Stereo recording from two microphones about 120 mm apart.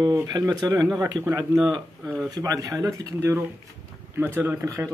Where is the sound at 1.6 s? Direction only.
15° right (ahead or behind).